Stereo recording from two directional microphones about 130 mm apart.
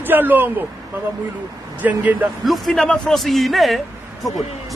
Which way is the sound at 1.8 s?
10° right (ahead or behind).